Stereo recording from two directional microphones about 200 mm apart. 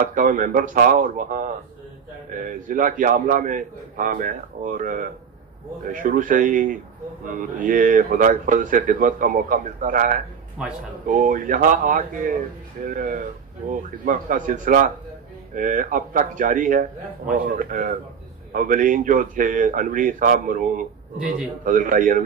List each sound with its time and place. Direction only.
0.0 s a man's voice: 40° right (ahead or behind)
10.6 s speech: 5° right (ahead or behind)
11.1 s a man's voice: 40° right (ahead or behind)